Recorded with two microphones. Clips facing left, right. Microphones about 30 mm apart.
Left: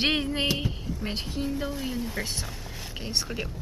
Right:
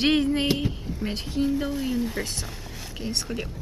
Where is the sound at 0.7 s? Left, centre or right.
Centre.